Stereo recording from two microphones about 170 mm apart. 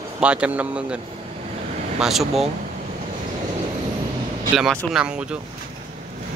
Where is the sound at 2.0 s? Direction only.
Centre (ahead or behind).